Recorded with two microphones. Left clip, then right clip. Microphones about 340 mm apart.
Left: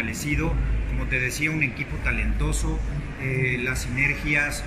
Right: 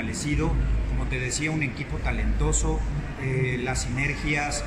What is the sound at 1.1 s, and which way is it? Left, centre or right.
Speech, right.